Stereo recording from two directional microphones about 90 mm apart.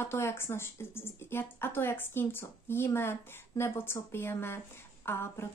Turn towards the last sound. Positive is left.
turn(degrees=30)  # may be behind; listen again after turning